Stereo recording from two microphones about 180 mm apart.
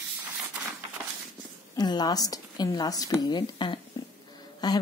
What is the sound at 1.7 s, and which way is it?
A woman's voice, 25° left (ahead or behind).